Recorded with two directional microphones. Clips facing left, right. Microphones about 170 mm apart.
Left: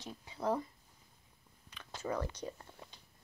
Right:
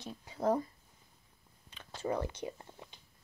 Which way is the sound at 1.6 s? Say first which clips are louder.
Right 3 dB; 25° right (ahead or behind).